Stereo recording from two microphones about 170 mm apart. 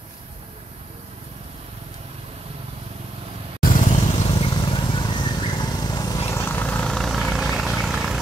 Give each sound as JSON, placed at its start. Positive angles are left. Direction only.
{"t": 3.6, "sound": "vehicle", "side_deg": 50}
{"t": 4.3, "sound": "vehicle", "side_deg": 25}
{"t": 6.3, "sound": "vehicle", "side_deg": 15}